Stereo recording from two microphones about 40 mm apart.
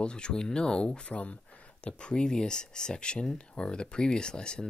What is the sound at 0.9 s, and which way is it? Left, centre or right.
Speech, left.